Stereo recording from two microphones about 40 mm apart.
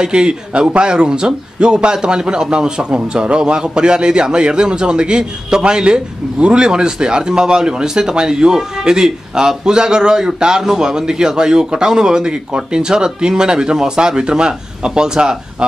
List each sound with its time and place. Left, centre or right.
0.0 s a man's voice: right